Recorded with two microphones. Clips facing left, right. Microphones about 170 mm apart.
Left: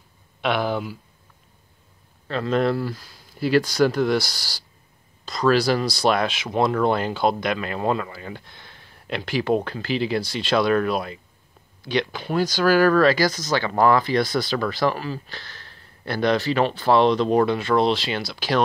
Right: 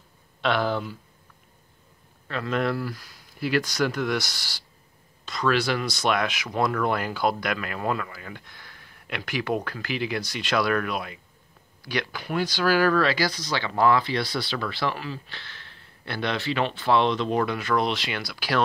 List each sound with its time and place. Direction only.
0.4 s speech: 15° left (ahead or behind)
2.2 s speech: 30° left (ahead or behind)
12.4 s speech: 45° left (ahead or behind); by 18.6 s 25° left (ahead or behind)